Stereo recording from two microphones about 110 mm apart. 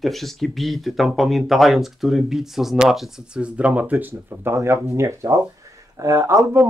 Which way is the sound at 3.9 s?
25° right (ahead or behind).